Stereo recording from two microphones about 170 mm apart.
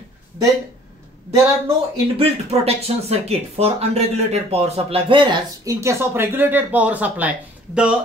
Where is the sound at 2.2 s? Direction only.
35° right (ahead or behind).